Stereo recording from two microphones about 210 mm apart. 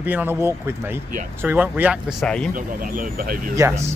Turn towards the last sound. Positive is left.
turn(degrees=-15)  # may be behind; listen again after turning